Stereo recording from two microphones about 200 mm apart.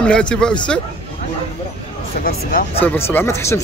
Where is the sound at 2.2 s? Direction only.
45° left (ahead or behind).